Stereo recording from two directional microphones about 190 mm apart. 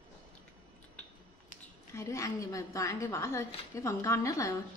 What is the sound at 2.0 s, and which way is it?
A woman's voice, 15° left (ahead or behind).